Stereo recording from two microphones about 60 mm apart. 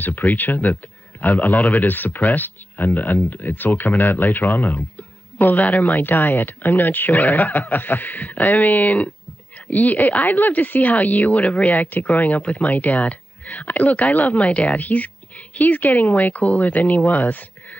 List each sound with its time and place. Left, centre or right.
0.0 s speech: left
4.7 s music: left
5.9 s speech: left
8.8 s speech: centre
9.7 s speech: left
17.0 s speech: left
17.3 s a sound: left